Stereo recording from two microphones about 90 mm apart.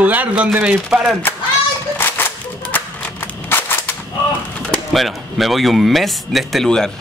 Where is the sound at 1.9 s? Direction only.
25° left (ahead or behind).